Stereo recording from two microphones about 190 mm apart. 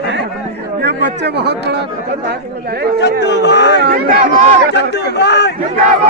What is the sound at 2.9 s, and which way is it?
Speech, 65° left (ahead or behind).